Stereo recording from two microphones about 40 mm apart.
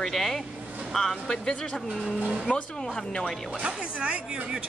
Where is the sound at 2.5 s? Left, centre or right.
Left.